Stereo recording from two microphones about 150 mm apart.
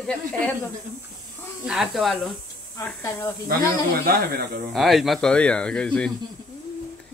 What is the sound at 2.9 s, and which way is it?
Speech, 15° left (ahead or behind).